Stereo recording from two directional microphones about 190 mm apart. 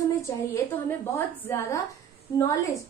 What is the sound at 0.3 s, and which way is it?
A woman's voice, 15° left (ahead or behind).